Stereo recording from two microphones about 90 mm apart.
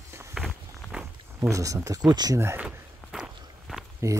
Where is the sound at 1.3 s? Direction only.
35° right (ahead or behind).